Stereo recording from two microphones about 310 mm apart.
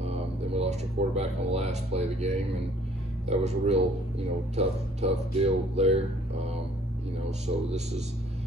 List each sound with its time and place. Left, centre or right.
0.0 s speech: centre